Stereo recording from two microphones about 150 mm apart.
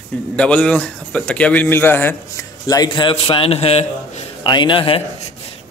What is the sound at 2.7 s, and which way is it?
A man's voice, 30° left (ahead or behind).